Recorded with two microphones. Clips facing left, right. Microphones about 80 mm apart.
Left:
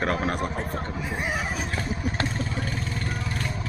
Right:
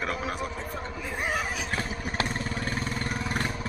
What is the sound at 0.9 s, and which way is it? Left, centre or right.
Speech, centre.